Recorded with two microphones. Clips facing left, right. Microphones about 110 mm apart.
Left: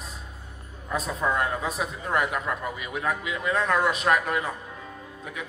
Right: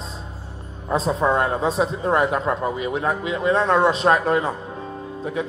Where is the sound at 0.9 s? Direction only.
30° right (ahead or behind).